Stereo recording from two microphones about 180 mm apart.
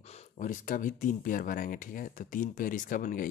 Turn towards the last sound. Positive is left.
turn(degrees=50)  # may be behind; listen again after turning